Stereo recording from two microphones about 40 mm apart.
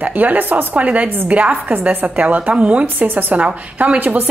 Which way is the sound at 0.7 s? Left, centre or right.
Right.